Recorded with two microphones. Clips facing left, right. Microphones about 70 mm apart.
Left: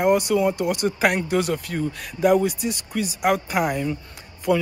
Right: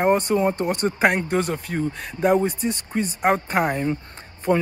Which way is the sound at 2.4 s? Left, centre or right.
Right.